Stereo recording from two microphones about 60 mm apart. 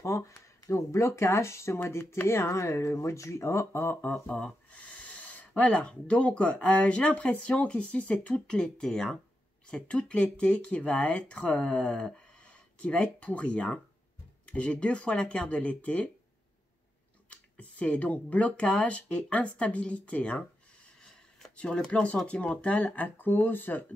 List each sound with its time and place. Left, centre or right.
0.0 s speech: left
4.6 s owl: left
5.5 s speech: centre
17.3 s speech: left